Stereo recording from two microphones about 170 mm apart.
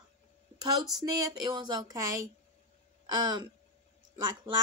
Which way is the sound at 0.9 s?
20° right (ahead or behind).